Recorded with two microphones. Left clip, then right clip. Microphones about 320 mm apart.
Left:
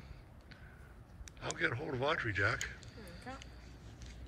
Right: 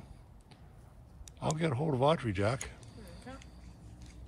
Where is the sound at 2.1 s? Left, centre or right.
Centre.